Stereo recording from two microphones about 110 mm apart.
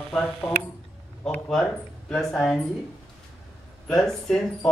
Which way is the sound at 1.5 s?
10° left (ahead or behind).